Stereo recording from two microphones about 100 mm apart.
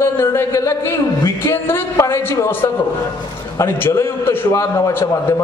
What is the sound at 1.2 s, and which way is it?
A man's voice, 25° left (ahead or behind).